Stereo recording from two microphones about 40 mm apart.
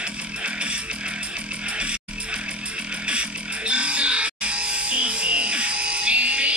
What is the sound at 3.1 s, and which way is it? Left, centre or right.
Music, right.